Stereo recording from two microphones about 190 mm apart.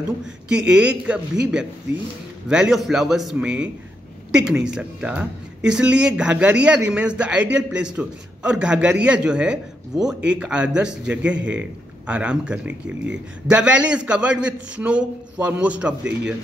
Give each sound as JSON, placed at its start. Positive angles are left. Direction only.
{"t": 0.5, "sound": "a man's voice", "side_deg": -5}
{"t": 11.3, "sound": "a man's voice", "side_deg": -75}
{"t": 12.1, "sound": "a man's voice", "side_deg": -5}